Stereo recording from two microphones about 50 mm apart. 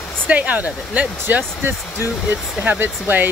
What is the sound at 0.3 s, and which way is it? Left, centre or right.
Speech, right.